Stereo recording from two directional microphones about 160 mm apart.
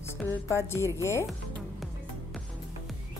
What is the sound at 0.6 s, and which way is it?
Speech, 15° left (ahead or behind).